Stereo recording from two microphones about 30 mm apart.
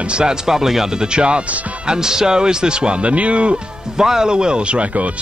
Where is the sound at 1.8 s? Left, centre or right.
Right.